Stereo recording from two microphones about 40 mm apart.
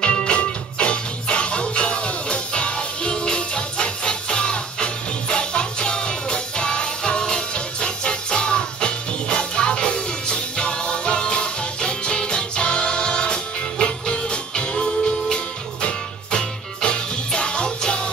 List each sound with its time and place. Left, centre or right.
0.0 s music: left